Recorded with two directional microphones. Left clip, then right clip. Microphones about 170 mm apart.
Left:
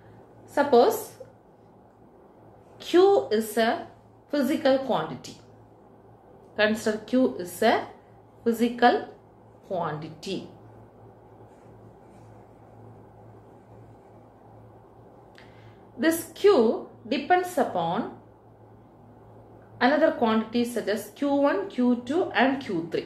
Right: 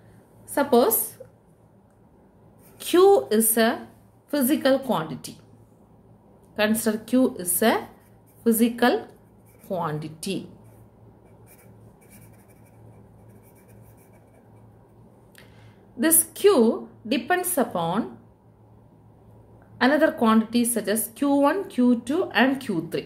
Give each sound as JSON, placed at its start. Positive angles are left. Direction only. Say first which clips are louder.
{"t": 0.5, "sound": "speech", "louder": "even", "side_deg": -60}
{"t": 2.8, "sound": "speech", "louder": "right 3 dB", "side_deg": -65}
{"t": 6.5, "sound": "speech", "louder": "even", "side_deg": -50}
{"t": 16.0, "sound": "speech", "louder": "right 2 dB", "side_deg": -60}
{"t": 19.8, "sound": "speech", "louder": "right 1 dB", "side_deg": -65}